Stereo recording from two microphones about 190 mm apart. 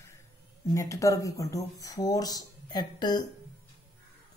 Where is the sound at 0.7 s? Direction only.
15° left (ahead or behind).